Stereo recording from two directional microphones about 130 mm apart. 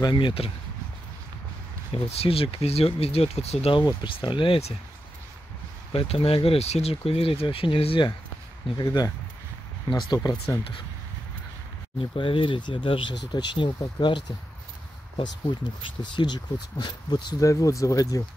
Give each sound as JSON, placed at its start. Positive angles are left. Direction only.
{"t": 0.0, "sound": "speech", "side_deg": 40}
{"t": 2.0, "sound": "speech", "side_deg": 50}
{"t": 3.8, "sound": "speech", "side_deg": 40}
{"t": 5.9, "sound": "speech", "side_deg": 45}
{"t": 8.7, "sound": "speech", "side_deg": 30}
{"t": 12.0, "sound": "speech", "side_deg": 40}
{"t": 15.8, "sound": "speech", "side_deg": 35}